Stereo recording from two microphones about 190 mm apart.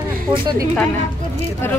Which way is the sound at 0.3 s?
20° right (ahead or behind).